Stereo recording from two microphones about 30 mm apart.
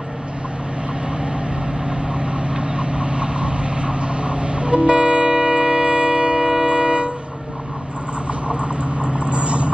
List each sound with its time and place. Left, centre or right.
1.9 s vehicle: right
6.5 s music: right
8.5 s vehicle: right